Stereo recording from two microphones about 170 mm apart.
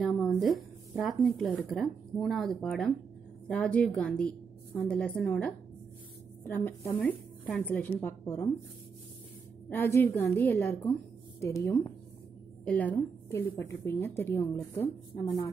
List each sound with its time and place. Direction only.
0.2 s a woman's voice: centre (ahead or behind)
9.7 s a woman's voice: 15° left (ahead or behind)